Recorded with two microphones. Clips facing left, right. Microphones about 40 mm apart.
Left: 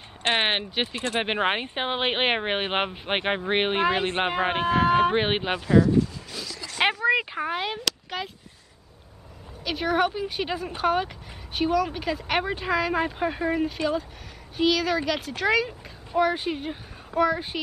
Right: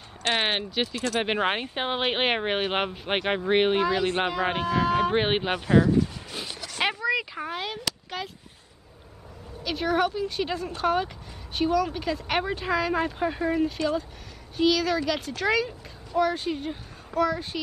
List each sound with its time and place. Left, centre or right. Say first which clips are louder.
0.2 s speech: left 2 dB; left
1.2 s speech: left 2 dB; centre
3.8 s speech: left 1 dB; left
5.1 s speech: even; centre
6.5 s a sound: left 1 dB; left
6.8 s speech: left 4 dB; left; by 8.3 s centre
9.6 s speech: left 1 dB; centre